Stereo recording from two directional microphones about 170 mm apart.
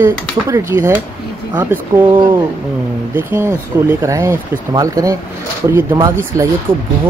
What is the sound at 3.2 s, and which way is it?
Speech, 15° right (ahead or behind).